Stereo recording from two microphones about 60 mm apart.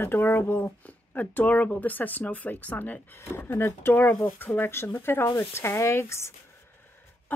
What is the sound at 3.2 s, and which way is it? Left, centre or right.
A woman's voice, left.